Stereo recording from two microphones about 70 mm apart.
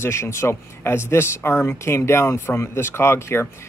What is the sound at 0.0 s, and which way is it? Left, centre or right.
Speech, left.